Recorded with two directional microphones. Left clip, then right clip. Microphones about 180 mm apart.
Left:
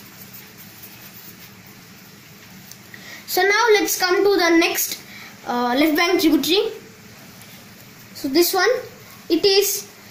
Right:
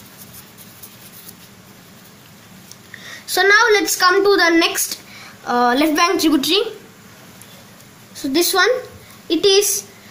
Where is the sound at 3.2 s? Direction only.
25° right (ahead or behind).